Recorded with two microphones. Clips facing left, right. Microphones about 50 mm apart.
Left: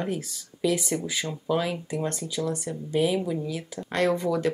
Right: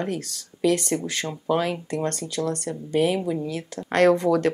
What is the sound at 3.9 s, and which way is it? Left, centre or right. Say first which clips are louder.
Speech: right 6 dB; right.